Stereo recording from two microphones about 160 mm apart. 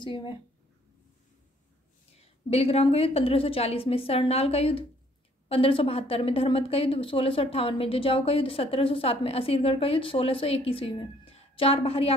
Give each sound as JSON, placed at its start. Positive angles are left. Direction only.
{"t": 0.0, "sound": "a woman's voice", "side_deg": 30}
{"t": 2.1, "sound": "a woman's voice", "side_deg": 40}